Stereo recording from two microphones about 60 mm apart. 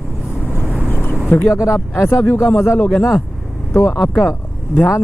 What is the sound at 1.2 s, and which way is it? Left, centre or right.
Speech, left.